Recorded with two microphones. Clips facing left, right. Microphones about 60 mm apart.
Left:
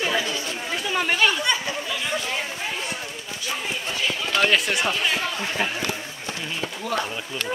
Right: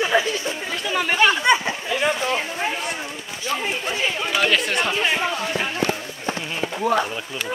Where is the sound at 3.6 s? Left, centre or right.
Right.